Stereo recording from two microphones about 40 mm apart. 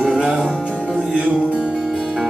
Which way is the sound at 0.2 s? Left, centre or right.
Right.